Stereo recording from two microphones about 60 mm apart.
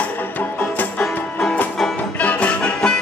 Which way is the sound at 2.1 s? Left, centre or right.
Left.